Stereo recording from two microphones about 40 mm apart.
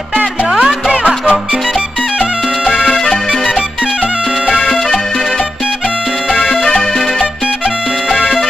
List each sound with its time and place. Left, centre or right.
0.5 s music: centre
0.9 s music: right
2.9 s music: centre
4.6 s music: centre
6.7 s music: centre